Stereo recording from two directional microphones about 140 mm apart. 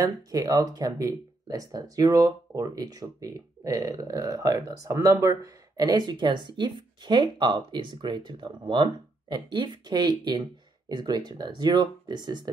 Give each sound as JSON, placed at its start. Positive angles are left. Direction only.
{"t": 0.0, "sound": "speech", "side_deg": -25}